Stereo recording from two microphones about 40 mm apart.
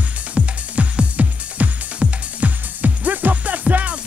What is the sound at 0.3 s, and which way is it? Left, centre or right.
Music, right.